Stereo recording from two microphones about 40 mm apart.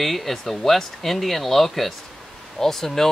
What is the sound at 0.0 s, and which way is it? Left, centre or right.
Speech, centre.